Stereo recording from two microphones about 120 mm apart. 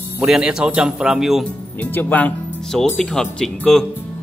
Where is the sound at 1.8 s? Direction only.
15° left (ahead or behind).